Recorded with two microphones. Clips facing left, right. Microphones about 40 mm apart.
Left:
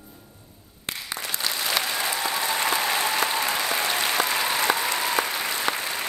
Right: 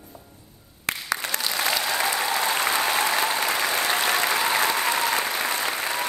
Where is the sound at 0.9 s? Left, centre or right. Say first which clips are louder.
Right 5 dB; right.